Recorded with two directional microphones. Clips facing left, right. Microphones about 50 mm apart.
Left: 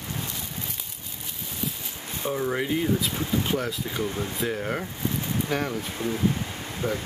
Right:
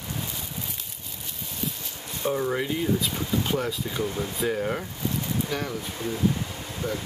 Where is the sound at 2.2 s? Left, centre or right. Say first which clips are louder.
Right 1 dB; centre.